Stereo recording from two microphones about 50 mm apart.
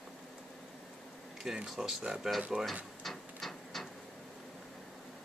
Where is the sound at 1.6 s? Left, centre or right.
Centre.